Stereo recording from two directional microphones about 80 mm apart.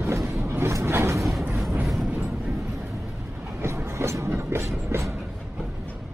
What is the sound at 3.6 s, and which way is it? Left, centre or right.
Train, right.